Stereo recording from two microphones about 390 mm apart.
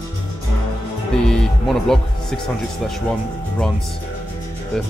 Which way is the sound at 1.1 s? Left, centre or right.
Centre.